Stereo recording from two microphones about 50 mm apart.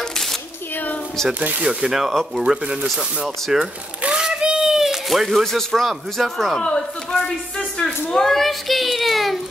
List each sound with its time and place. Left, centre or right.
1.6 s speech: centre
3.5 s a sound: centre
5.7 s speech: centre
6.6 s speech: centre
8.3 s child singing: centre